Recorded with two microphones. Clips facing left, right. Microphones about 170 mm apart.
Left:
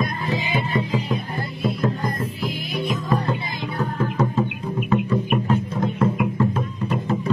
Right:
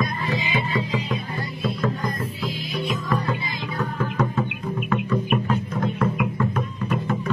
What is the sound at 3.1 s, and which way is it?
Music, 25° left (ahead or behind).